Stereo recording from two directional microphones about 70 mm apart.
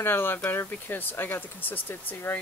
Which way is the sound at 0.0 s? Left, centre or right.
Left.